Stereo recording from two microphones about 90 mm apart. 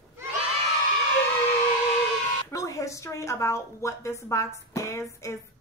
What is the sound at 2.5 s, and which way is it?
A woman's voice, 35° left (ahead or behind).